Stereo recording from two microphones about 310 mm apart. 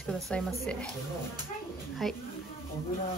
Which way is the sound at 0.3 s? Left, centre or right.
Centre.